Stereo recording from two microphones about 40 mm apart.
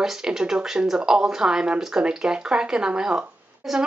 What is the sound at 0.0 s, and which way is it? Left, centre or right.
Speech, centre.